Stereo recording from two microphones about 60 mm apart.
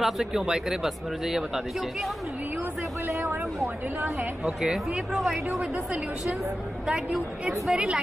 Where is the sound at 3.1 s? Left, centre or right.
Right.